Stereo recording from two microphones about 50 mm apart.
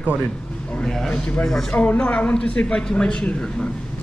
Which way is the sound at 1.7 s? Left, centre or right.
Left.